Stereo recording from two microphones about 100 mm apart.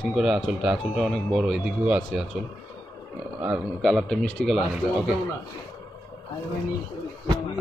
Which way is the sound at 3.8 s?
5° left (ahead or behind).